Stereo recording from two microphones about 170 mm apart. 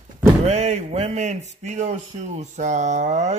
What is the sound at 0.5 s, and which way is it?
Speech, 40° right (ahead or behind).